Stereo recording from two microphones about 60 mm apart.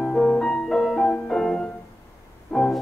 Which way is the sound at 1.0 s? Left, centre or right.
Left.